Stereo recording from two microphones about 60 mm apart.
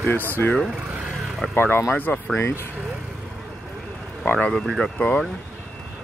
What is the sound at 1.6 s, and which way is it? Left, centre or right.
Speech, left.